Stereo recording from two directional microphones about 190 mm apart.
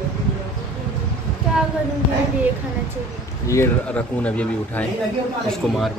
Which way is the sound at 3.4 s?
15° left (ahead or behind).